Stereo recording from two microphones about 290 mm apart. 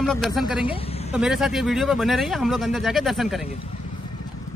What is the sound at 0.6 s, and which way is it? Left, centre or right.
Speech, centre.